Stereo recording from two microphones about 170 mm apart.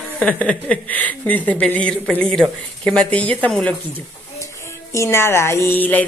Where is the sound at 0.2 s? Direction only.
10° left (ahead or behind).